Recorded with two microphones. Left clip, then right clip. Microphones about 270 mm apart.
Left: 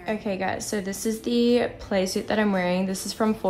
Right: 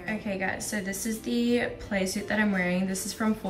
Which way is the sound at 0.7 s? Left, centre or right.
Left.